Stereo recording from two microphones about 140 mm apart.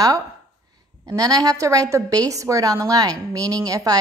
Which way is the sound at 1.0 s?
25° right (ahead or behind).